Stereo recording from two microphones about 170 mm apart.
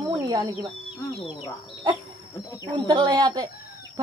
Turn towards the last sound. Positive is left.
turn(degrees=-25)  # may be behind; listen again after turning